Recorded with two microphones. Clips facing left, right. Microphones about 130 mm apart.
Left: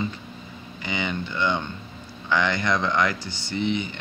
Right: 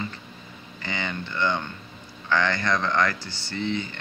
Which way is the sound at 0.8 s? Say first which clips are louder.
Left 3 dB; 15° left (ahead or behind).